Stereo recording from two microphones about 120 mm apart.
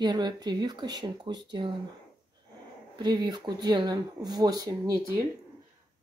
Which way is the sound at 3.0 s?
35° right (ahead or behind).